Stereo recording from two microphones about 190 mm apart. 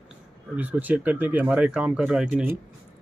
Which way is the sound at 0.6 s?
10° right (ahead or behind).